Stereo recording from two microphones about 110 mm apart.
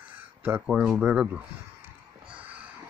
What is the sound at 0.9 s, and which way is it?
Speech, 10° right (ahead or behind).